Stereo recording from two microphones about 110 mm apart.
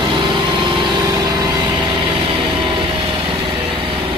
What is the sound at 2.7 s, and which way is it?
Lawn mower, 55° right (ahead or behind).